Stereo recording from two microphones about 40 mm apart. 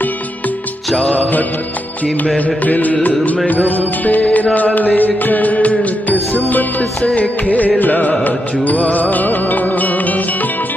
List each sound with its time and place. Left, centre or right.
2.2 s music: left
7.0 s music: left
7.4 s music: left